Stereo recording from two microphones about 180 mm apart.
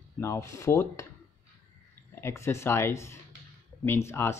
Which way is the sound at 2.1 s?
15° left (ahead or behind).